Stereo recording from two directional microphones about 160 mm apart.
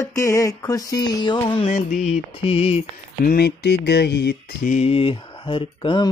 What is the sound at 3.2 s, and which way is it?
Mantra, 75° left (ahead or behind).